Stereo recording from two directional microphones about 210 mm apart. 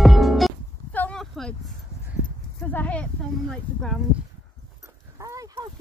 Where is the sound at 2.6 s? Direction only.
5° left (ahead or behind).